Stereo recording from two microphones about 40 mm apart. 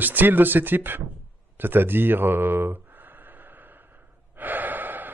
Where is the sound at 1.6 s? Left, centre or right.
Right.